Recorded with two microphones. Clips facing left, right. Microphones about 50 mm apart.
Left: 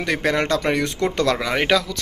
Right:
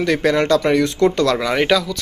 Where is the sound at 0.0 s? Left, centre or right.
Left.